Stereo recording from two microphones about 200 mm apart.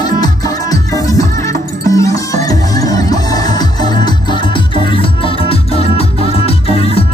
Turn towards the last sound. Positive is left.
turn(degrees=30)  # may be behind; listen again after turning